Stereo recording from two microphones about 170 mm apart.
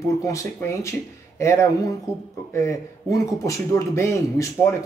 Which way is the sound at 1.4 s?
15° left (ahead or behind).